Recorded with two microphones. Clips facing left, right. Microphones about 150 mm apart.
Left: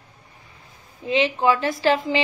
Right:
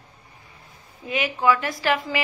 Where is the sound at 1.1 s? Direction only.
25° left (ahead or behind).